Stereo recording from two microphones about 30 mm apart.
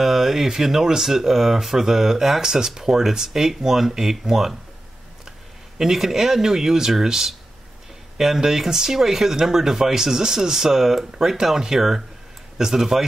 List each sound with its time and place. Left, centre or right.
0.0 s speech: centre
5.8 s speech: centre
8.4 s speech: centre